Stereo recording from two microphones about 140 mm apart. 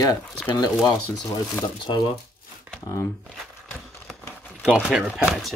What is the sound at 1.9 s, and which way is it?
Speech, 35° left (ahead or behind).